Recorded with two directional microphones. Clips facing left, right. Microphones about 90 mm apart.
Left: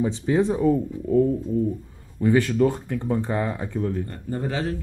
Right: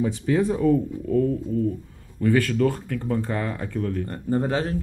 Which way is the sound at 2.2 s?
20° left (ahead or behind).